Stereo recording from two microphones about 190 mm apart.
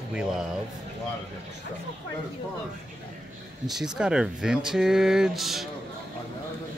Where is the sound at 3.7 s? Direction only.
5° right (ahead or behind).